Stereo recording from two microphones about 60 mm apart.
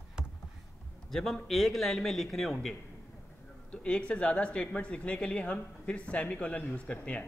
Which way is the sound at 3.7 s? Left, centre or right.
Centre.